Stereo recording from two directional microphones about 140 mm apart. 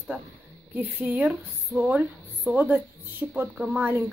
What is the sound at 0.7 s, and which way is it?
Speech, 15° right (ahead or behind).